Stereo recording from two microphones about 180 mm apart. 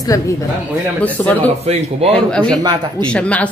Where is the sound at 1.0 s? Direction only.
10° left (ahead or behind).